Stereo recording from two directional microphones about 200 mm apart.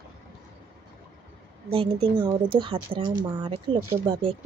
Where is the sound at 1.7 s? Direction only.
25° right (ahead or behind).